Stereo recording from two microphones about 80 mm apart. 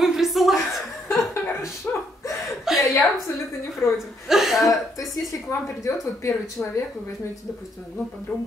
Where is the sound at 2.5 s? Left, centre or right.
Centre.